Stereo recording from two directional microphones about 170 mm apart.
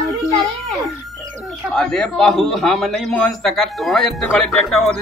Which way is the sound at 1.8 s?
5° left (ahead or behind).